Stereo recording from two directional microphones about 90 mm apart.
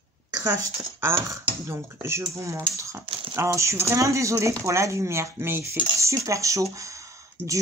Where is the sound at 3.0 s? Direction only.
90° right.